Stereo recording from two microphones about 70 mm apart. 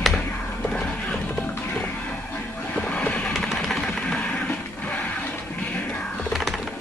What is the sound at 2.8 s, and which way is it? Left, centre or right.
Vehicle, left.